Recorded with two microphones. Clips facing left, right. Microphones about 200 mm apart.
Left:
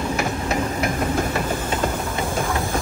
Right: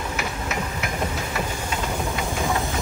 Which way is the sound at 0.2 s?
35° left (ahead or behind).